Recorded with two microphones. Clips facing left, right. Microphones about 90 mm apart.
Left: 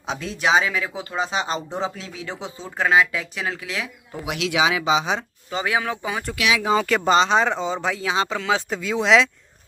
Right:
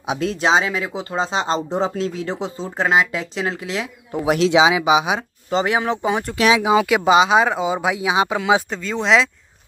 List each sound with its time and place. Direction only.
0.4 s speech: 30° right (ahead or behind)
4.6 s speech: 20° right (ahead or behind)
5.5 s speech: 30° right (ahead or behind)
6.6 s speech: 10° right (ahead or behind)
8.6 s speech: 5° left (ahead or behind)